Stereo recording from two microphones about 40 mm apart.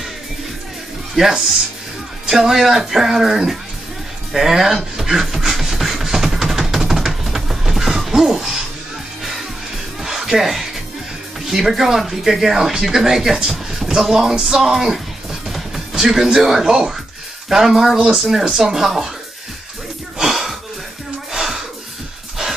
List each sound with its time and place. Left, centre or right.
1.1 s speech: centre
5.2 s music: centre
10.0 s a sound: centre
11.4 s speech: centre
13.5 s music: centre
14.0 s speech: centre
15.4 s music: centre
16.3 s speech: centre
18.2 s speech: centre
20.2 s wheeze: centre
21.3 s a sound: centre